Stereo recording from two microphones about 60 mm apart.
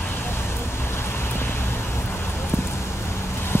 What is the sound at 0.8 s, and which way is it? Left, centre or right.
Vehicle, left.